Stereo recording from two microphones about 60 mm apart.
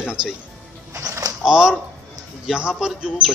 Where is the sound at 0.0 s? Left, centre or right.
Centre.